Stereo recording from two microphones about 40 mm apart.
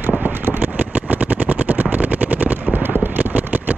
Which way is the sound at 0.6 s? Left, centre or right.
Right.